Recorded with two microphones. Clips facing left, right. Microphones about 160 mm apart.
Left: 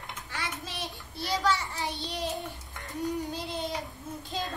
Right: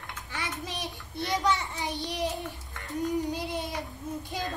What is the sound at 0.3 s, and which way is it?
Child singing, 20° right (ahead or behind).